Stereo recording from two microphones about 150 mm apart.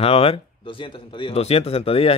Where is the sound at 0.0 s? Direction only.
40° left (ahead or behind).